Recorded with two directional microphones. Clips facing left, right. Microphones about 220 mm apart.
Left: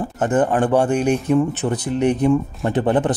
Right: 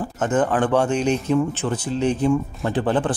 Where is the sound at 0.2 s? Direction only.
10° left (ahead or behind).